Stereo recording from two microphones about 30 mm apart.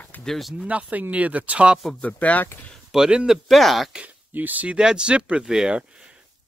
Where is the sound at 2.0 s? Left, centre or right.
Left.